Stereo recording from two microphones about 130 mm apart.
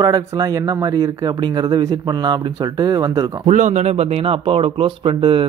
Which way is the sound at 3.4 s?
65° right (ahead or behind).